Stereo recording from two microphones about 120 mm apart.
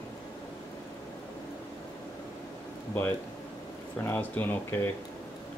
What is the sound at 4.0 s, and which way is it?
Speech, 15° left (ahead or behind).